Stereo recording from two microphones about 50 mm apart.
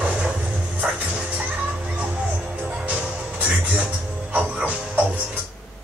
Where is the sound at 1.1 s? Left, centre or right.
Centre.